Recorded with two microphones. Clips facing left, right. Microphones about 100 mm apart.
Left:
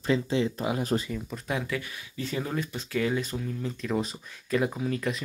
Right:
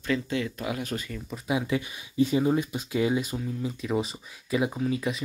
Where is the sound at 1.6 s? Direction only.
20° right (ahead or behind).